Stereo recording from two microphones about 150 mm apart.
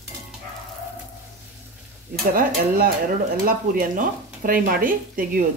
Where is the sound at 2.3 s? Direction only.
70° right (ahead or behind).